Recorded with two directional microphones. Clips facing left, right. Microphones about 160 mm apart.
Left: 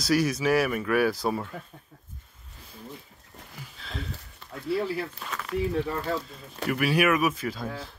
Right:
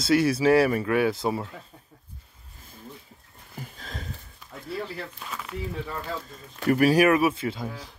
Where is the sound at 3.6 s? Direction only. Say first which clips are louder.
Left 3 dB; 45° right (ahead or behind).